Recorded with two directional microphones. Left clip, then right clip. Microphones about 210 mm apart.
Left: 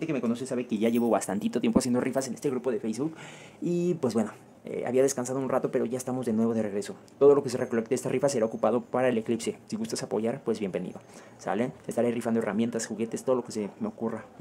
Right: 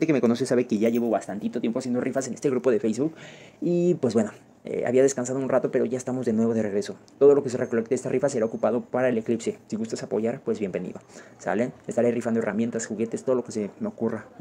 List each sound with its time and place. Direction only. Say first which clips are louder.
0.0 s speech: right 8 dB; 25° right (ahead or behind)
0.7 s speech: right 2 dB; 5° right (ahead or behind); by 2.0 s 10° left (ahead or behind)
2.0 s speech: right 2 dB; 5° right (ahead or behind)
2.4 s speech: right 7 dB; 15° right (ahead or behind)
3.6 s speech: right 5 dB; 5° right (ahead or behind)